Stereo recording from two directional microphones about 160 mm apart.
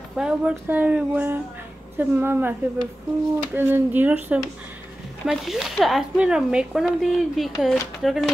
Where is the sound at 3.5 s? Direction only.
10° right (ahead or behind).